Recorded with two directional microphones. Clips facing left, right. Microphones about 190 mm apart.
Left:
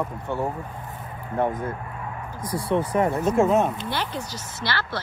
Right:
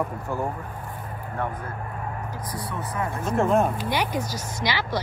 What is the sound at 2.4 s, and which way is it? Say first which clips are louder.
Speech: left 12 dB; 30° left (ahead or behind).